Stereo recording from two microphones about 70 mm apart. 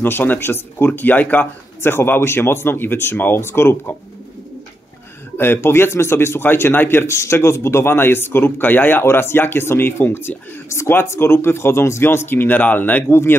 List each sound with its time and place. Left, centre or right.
0.0 s speech: left
5.4 s speech: left